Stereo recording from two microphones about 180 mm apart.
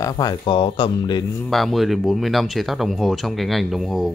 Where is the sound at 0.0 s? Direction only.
25° left (ahead or behind).